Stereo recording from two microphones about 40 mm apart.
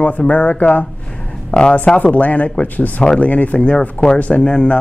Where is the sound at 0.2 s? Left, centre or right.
Left.